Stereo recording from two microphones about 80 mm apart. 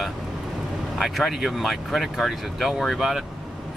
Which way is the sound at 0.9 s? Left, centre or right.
Centre.